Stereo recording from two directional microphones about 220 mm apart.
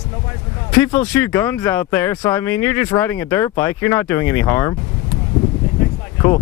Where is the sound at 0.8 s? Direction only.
10° left (ahead or behind).